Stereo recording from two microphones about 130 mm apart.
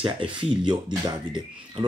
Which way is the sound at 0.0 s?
40° right (ahead or behind).